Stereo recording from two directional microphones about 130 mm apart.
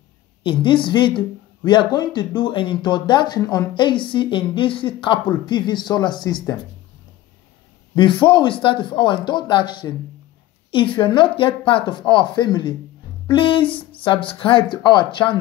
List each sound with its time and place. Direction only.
0.4 s speech: 40° left (ahead or behind)
7.9 s speech: 40° left (ahead or behind)